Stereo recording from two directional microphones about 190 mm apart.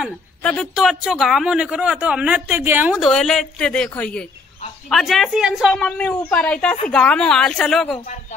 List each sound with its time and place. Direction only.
0.0 s speech: 5° left (ahead or behind)